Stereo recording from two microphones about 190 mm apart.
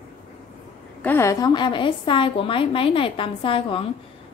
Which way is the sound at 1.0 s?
15° left (ahead or behind).